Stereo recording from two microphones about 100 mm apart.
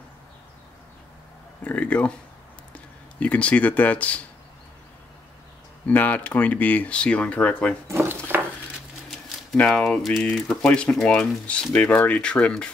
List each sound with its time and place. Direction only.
1.6 s speech: 15° left (ahead or behind)
5.9 s speech: 15° left (ahead or behind)
7.9 s speech: 25° right (ahead or behind)
9.7 s speech: 5° left (ahead or behind)